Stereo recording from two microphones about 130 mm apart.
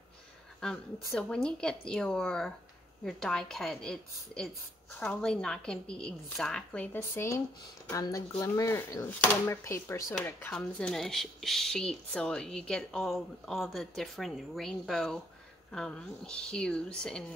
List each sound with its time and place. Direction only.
0.6 s speech: 5° left (ahead or behind); by 10.1 s 20° left (ahead or behind)
10.5 s speech: 5° left (ahead or behind)